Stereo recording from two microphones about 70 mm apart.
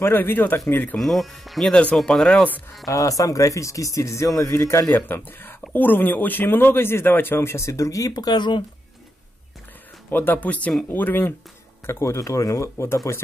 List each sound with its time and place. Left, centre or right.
0.0 s speech: left
0.9 s speech: centre
1.7 s speech: centre
2.9 s speech: left
10.1 s speech: left
11.8 s speech: left